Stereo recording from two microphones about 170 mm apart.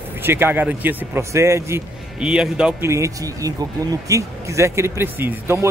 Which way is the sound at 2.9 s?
20° right (ahead or behind).